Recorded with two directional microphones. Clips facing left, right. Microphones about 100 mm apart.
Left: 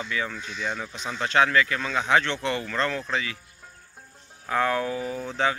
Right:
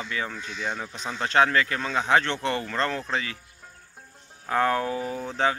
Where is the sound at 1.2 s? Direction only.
35° right (ahead or behind).